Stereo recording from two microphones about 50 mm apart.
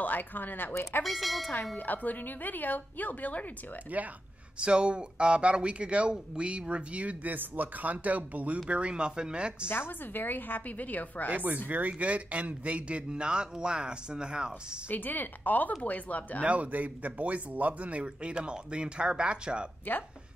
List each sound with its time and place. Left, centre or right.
0.0 s speech: left
1.0 s speech: centre
1.8 s speech: left
3.9 s speech: right
4.6 s speech: right
9.7 s speech: left
11.3 s speech: right; by 14.8 s centre
14.9 s speech: left
16.4 s speech: right